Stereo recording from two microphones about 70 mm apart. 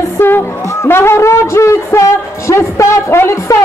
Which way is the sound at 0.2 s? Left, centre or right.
Left.